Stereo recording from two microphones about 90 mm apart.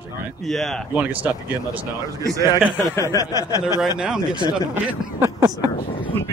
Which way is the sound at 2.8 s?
35° left (ahead or behind).